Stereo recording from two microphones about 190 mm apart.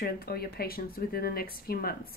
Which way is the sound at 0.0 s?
55° left (ahead or behind).